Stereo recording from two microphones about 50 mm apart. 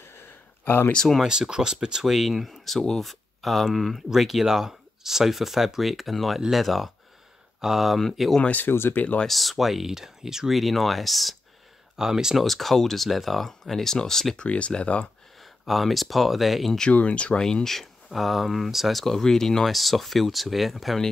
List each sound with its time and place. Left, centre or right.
0.0 s a sound: left
0.9 s speech: centre
1.2 s speech: centre
8.6 s speech: left
9.3 s speech: centre
12.0 s speech: centre
12.4 s speech: centre
14.4 s speech: left
15.6 s speech: centre
16.9 s speech: left
17.4 s speech: centre